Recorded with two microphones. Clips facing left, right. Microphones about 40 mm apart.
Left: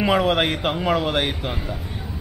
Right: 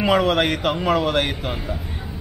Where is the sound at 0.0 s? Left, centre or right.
Centre.